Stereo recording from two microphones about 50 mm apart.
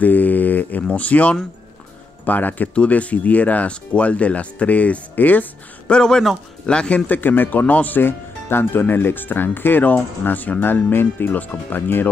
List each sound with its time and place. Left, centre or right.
0.0 s speech: left
5.9 s speech: centre
7.1 s speech: left
8.0 s speech: left
11.3 s speech: left